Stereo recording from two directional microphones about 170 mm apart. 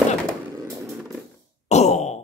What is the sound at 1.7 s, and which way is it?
Wail, 40° left (ahead or behind).